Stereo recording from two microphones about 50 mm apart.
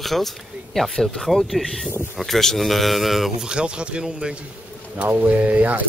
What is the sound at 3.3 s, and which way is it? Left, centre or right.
Speech, centre.